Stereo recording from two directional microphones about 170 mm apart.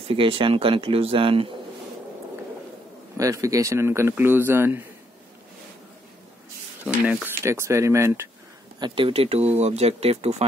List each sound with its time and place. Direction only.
0.0 s speech: 35° right (ahead or behind)
3.2 s speech: 20° right (ahead or behind)
6.8 s speech: 10° right (ahead or behind)
8.7 s speech: 30° right (ahead or behind)